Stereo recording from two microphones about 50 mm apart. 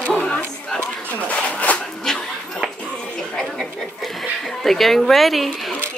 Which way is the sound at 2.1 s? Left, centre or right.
Centre.